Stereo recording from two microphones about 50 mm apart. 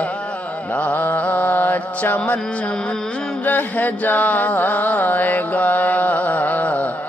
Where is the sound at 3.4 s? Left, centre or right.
Left.